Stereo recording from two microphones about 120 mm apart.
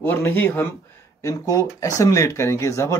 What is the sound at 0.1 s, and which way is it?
Speech, 15° left (ahead or behind).